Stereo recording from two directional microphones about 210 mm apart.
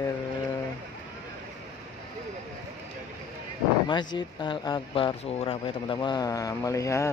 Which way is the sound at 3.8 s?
20° left (ahead or behind).